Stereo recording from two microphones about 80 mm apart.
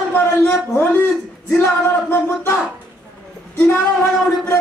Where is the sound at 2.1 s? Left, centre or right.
Left.